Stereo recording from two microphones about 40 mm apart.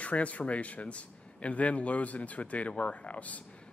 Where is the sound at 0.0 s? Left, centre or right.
Left.